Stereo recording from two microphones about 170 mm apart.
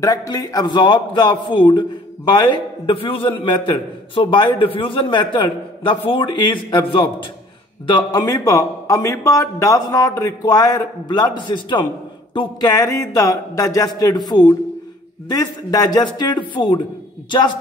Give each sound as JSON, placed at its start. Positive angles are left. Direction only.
{"t": 0.0, "sound": "a man's voice", "side_deg": 20}